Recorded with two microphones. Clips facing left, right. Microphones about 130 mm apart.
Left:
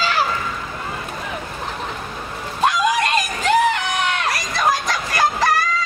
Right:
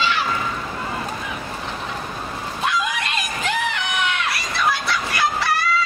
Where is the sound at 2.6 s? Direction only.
40° left (ahead or behind).